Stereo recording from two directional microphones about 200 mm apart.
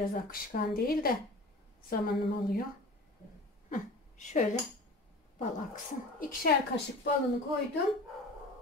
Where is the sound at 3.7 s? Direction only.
40° left (ahead or behind).